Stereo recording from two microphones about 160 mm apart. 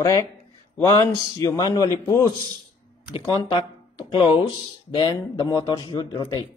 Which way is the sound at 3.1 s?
30° left (ahead or behind).